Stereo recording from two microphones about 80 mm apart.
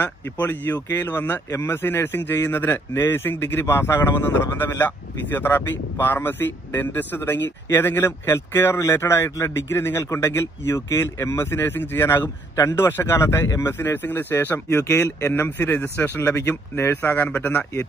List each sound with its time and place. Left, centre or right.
0.0 s a man's voice: left